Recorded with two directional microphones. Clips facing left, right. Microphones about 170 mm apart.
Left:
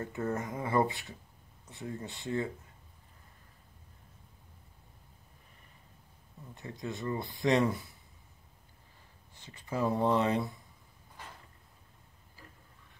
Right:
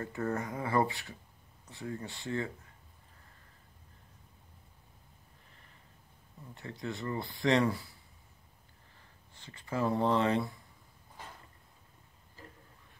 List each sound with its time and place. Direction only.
0.0 s speech: 20° left (ahead or behind)
6.5 s speech: 20° left (ahead or behind)
9.4 s speech: 20° left (ahead or behind)